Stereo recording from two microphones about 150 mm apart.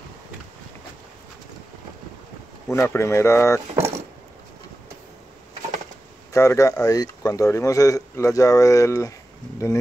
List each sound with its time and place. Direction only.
2.7 s speech: 15° left (ahead or behind)
3.7 s vehicle: 15° right (ahead or behind)
6.3 s a man's voice: 20° left (ahead or behind)